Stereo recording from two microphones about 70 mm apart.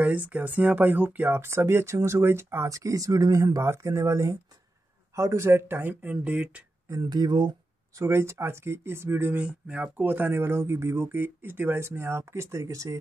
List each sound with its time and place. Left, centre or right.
0.0 s speech: right
2.7 s speech: right; by 6.6 s centre
6.9 s speech: right
7.2 s speech: right
8.1 s speech: right